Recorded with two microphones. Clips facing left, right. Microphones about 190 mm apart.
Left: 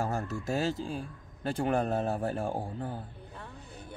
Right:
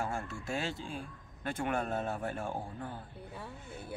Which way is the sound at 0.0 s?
40° left (ahead or behind).